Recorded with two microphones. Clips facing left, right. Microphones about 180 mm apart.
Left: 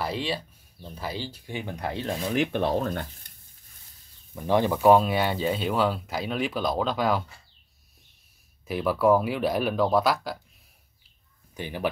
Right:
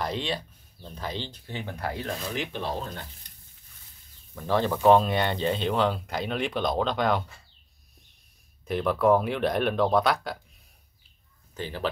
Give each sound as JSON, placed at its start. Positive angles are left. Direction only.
{"t": 0.0, "sound": "speech", "side_deg": 5}
{"t": 2.3, "sound": "speech", "side_deg": 55}
{"t": 4.4, "sound": "speech", "side_deg": 15}
{"t": 8.6, "sound": "speech", "side_deg": 5}
{"t": 11.5, "sound": "speech", "side_deg": 15}